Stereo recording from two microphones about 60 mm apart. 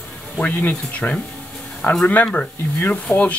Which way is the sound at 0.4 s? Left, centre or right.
Left.